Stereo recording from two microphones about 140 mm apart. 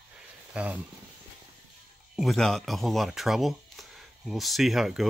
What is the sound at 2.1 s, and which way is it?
Speech, centre (ahead or behind).